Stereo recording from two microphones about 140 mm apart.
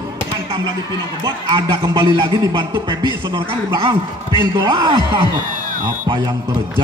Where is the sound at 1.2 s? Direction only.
30° right (ahead or behind).